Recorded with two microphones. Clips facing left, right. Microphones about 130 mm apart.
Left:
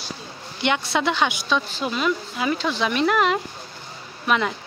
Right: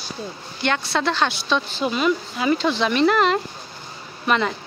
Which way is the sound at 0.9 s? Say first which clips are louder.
Even; 15° left (ahead or behind).